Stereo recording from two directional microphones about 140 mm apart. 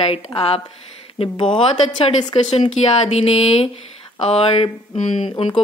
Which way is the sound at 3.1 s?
50° left (ahead or behind).